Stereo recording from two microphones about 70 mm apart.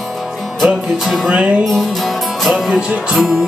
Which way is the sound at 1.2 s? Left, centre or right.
Centre.